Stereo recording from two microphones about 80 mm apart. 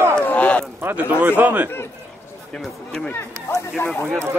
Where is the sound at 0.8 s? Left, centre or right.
Right.